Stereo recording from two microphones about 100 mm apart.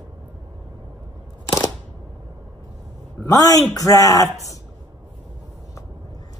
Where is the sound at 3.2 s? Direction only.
35° left (ahead or behind).